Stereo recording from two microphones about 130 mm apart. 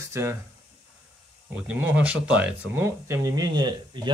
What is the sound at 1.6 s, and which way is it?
Speech, 10° right (ahead or behind).